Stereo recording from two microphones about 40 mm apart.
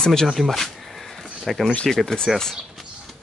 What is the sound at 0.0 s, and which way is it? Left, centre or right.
Speech, centre.